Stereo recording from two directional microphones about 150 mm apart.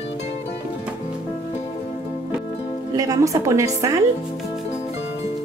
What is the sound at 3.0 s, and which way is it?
A woman's voice, 20° right (ahead or behind).